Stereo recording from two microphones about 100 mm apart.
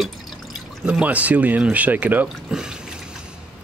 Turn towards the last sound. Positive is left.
turn(degrees=-5)  # may be behind; listen again after turning